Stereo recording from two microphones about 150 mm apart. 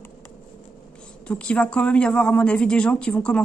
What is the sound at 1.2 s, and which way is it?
Speech, 5° left (ahead or behind).